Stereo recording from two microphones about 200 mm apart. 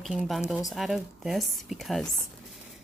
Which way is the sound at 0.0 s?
5° right (ahead or behind).